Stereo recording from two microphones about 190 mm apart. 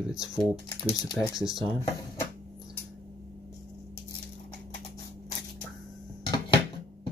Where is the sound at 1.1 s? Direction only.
Centre (ahead or behind).